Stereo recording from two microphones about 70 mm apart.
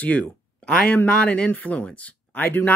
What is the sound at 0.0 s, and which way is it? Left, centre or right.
Speech, left.